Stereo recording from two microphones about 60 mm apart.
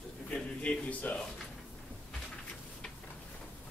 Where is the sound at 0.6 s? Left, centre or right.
Left.